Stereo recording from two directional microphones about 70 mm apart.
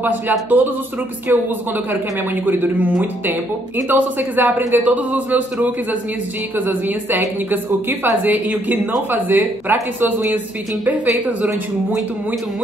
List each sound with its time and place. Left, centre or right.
0.0 s speech: right